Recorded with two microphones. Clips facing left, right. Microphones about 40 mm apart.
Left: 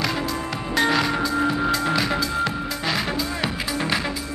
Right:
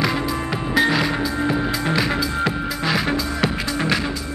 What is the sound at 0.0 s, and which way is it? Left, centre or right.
Music, centre.